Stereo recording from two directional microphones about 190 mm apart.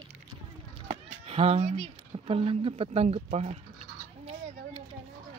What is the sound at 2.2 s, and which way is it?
Speech, 30° right (ahead or behind).